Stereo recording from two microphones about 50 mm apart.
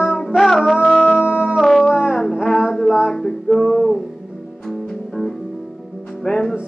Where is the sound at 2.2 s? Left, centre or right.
Centre.